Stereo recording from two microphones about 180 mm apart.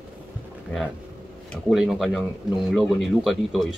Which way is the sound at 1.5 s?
Centre (ahead or behind).